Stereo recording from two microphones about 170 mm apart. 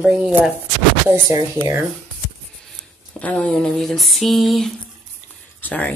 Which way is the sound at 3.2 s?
5° left (ahead or behind).